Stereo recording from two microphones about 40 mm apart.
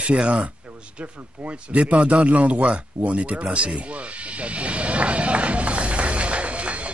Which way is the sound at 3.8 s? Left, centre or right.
Right.